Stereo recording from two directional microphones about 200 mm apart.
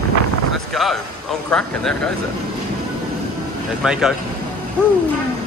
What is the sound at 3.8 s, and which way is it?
Speech, 5° right (ahead or behind).